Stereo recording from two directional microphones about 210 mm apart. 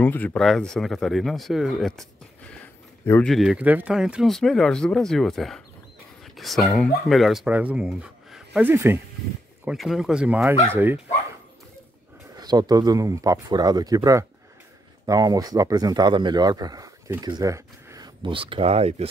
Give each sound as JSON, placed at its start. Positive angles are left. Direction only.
{"t": 0.0, "sound": "speech", "side_deg": 10}
{"t": 3.1, "sound": "speech", "side_deg": 5}
{"t": 9.7, "sound": "speech", "side_deg": 0}
{"t": 12.4, "sound": "speech", "side_deg": -20}